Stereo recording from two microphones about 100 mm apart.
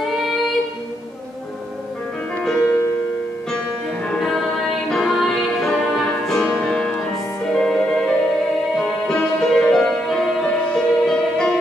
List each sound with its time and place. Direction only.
2.6 s music: 20° left (ahead or behind)
3.5 s music: 10° left (ahead or behind)